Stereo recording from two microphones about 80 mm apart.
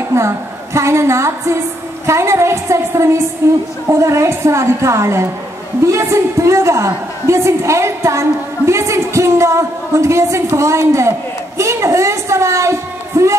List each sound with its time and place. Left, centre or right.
0.1 s a woman's voice: right